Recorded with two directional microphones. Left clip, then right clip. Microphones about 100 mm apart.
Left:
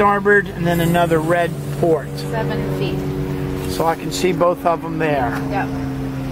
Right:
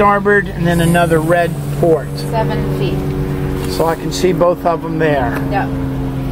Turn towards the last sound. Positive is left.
turn(degrees=-5)  # may be behind; listen again after turning